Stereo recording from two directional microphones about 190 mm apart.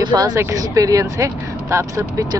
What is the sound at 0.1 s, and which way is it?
Speech, 20° right (ahead or behind).